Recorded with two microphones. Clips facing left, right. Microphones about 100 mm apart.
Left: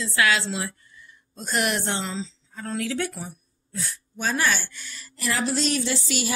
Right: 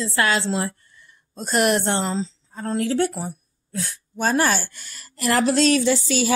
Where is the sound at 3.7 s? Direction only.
70° right (ahead or behind).